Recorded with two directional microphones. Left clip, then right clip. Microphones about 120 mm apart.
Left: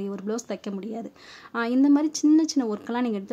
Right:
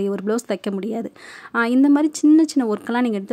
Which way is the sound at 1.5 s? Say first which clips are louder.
Right 5 dB; 40° right (ahead or behind).